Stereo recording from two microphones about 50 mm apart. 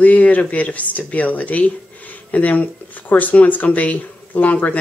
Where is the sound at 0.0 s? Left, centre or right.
Left.